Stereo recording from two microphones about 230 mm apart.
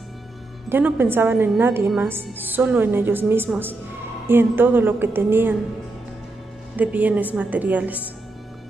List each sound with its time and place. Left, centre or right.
0.7 s a woman's voice: centre
6.8 s a woman's voice: centre